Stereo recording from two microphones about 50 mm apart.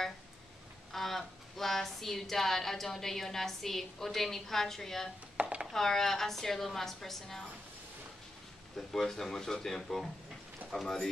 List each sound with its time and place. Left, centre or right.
0.9 s a woman's voice: centre
5.4 s a sound: right
5.7 s a woman's voice: centre
8.7 s a woman's voice: centre